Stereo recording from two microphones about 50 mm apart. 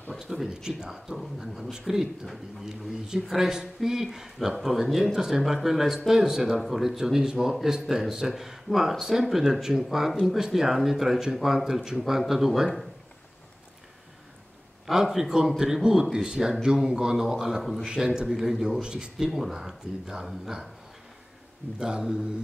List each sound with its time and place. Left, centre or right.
0.1 s speech: centre
14.9 s speech: centre
19.3 s speech: centre
21.7 s speech: centre